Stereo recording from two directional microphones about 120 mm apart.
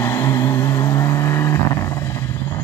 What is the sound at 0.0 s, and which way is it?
Vehicle, 20° left (ahead or behind).